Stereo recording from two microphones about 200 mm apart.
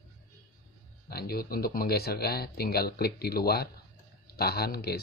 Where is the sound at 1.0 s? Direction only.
50° left (ahead or behind).